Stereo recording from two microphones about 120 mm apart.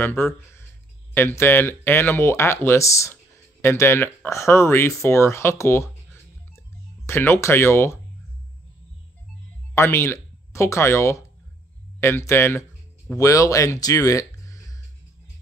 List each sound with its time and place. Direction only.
0.0 s speech: 20° left (ahead or behind)
7.1 s speech: 20° left (ahead or behind)
9.8 s speech: 20° left (ahead or behind)